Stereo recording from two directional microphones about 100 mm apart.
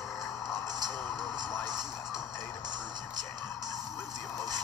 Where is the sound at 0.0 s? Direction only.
Centre (ahead or behind).